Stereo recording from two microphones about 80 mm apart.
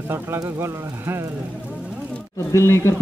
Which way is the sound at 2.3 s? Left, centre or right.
Left.